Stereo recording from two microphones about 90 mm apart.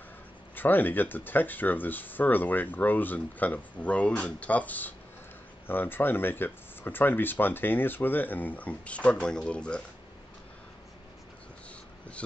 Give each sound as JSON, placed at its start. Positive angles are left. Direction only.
{"t": 0.6, "sound": "speech", "side_deg": 20}